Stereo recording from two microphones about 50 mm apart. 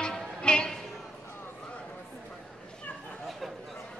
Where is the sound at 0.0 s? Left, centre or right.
Centre.